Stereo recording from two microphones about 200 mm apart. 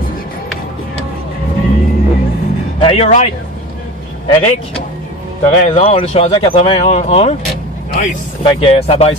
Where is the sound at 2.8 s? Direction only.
30° left (ahead or behind).